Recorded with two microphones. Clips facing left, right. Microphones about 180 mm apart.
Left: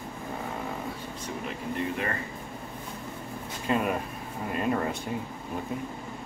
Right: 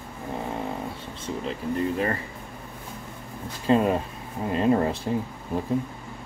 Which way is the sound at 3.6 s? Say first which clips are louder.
Right 6 dB; 30° right (ahead or behind).